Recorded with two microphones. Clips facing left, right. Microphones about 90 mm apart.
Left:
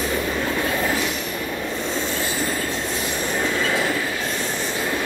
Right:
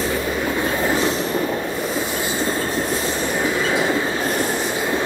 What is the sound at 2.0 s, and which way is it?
Train, 20° right (ahead or behind).